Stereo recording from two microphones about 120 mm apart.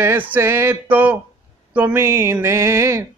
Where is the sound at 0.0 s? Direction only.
15° right (ahead or behind).